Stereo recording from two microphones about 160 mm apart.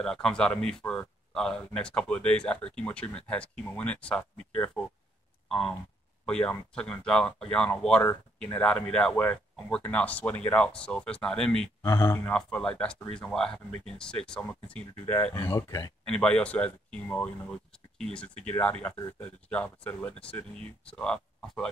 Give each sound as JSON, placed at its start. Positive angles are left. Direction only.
{"t": 0.0, "sound": "speech", "side_deg": 5}
{"t": 11.8, "sound": "speech", "side_deg": 20}
{"t": 12.3, "sound": "speech", "side_deg": 5}
{"t": 15.4, "sound": "speech", "side_deg": 20}
{"t": 16.1, "sound": "speech", "side_deg": 5}